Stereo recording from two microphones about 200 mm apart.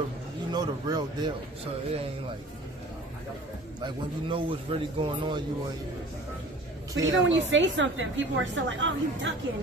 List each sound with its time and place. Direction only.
0.5 s a man's voice: 20° right (ahead or behind)
3.8 s a man's voice: 25° right (ahead or behind)
7.0 s a woman's voice: 70° right (ahead or behind)